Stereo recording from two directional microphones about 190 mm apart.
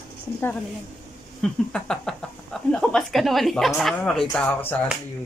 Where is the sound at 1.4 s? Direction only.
5° left (ahead or behind).